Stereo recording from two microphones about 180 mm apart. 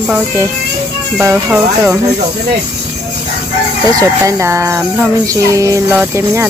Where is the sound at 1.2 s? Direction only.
10° right (ahead or behind).